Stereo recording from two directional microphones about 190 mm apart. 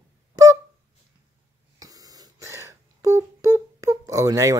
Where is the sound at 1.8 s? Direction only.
20° right (ahead or behind).